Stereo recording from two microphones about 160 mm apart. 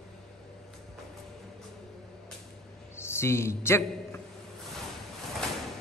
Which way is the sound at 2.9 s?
15° left (ahead or behind).